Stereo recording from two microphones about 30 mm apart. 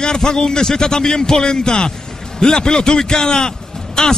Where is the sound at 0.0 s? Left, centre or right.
Left.